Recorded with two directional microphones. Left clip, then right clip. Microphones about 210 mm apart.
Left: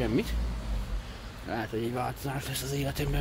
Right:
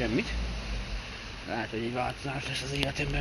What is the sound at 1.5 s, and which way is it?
Speech, 10° left (ahead or behind).